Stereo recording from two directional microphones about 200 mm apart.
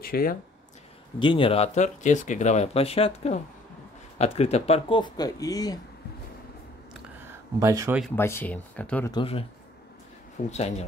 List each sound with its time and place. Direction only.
0.0 s speech: 45° left (ahead or behind)
1.2 s speech: 25° left (ahead or behind)
7.2 s speech: 15° right (ahead or behind)
8.2 s speech: 10° left (ahead or behind)
9.1 s speech: 30° left (ahead or behind)